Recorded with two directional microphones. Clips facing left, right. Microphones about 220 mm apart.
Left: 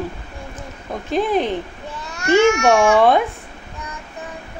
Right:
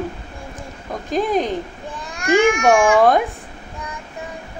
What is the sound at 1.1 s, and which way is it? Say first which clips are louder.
Speech: left 1 dB; 40° right (ahead or behind).